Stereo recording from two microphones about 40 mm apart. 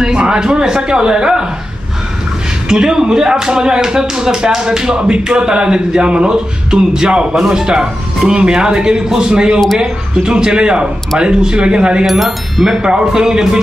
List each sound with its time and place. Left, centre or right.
0.0 s speech: right
2.7 s speech: centre
12.1 s chime: centre
12.8 s speech: centre